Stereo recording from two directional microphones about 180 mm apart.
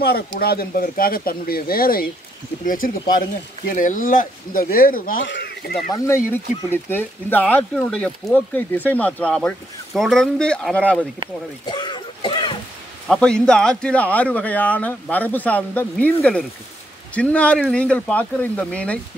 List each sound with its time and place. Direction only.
0.0 s speech: 60° left (ahead or behind)
5.2 s speech: 70° left (ahead or behind)
5.9 s speech: 15° left (ahead or behind)
11.6 s a sound: 25° left (ahead or behind)
13.1 s speech: 5° left (ahead or behind)